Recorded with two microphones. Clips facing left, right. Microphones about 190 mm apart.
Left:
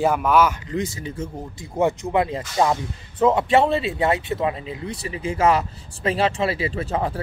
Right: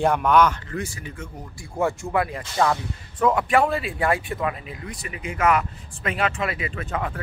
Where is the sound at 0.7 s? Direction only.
20° left (ahead or behind).